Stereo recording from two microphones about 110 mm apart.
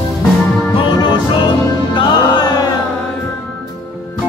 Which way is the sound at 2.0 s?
40° left (ahead or behind).